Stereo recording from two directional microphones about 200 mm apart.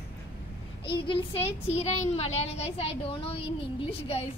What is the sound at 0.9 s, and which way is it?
A woman's voice, 25° left (ahead or behind).